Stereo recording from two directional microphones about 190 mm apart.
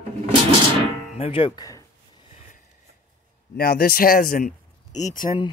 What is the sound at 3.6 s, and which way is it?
Speech, 50° left (ahead or behind).